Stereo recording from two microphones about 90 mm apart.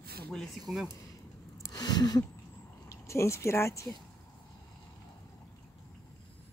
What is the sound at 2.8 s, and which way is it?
Speech, 30° left (ahead or behind).